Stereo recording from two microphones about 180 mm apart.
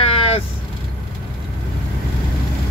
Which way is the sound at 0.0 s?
35° left (ahead or behind).